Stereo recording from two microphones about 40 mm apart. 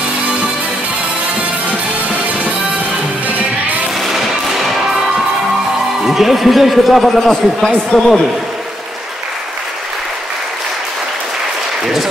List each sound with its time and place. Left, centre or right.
1.7 s music: right
4.0 s music: centre
6.0 s a man's voice: centre
11.8 s applause: centre